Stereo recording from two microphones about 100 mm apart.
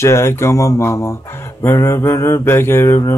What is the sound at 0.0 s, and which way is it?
Mantra, 25° left (ahead or behind).